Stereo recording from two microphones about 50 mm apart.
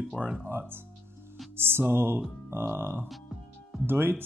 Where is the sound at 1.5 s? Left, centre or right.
Right.